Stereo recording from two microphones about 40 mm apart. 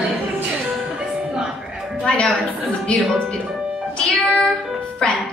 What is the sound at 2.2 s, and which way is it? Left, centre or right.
Speech, centre.